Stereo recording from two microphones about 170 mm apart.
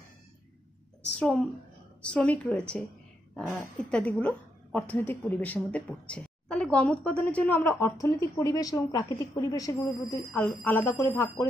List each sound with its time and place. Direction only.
1.1 s a woman's voice: 5° left (ahead or behind)
3.9 s a woman's voice: 10° left (ahead or behind)